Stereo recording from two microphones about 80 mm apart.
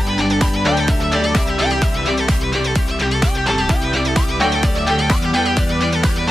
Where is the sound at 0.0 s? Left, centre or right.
Centre.